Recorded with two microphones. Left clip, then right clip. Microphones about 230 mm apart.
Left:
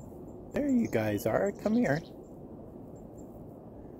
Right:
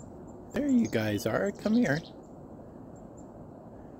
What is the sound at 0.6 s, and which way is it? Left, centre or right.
Speech, right.